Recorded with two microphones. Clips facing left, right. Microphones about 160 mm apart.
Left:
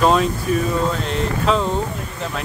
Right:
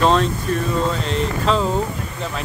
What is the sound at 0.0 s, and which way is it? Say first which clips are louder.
Speech: left 1 dB; 5° left (ahead or behind).